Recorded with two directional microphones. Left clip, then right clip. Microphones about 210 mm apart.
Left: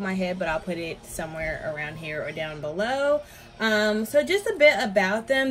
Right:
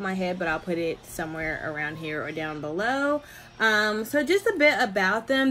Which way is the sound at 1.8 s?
50° right (ahead or behind).